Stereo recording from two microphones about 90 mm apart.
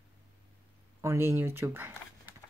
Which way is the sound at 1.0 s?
30° right (ahead or behind).